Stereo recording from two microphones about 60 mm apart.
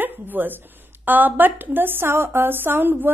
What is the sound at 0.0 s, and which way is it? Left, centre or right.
A woman's voice, right.